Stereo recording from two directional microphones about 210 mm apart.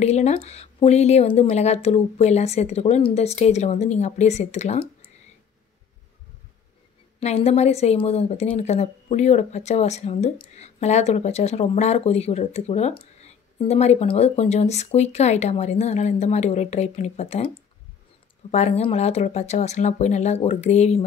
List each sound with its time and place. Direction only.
0.0 s a woman's voice: 30° left (ahead or behind)
7.2 s a woman's voice: 30° left (ahead or behind)
18.5 s a woman's voice: 30° left (ahead or behind)